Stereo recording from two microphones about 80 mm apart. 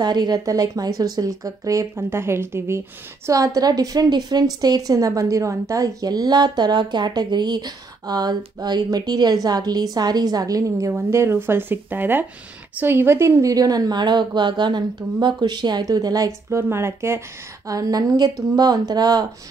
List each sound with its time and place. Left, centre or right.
0.0 s speech: right
3.3 s a woman's voice: right
10.9 s a woman's voice: right
15.8 s speech: right
16.4 s speech: right
17.6 s a woman's voice: right